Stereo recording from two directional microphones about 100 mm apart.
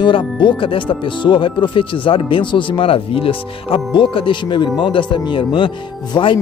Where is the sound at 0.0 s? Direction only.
55° left (ahead or behind).